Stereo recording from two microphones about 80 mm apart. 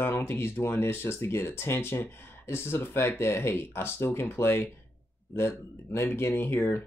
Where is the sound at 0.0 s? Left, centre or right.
Left.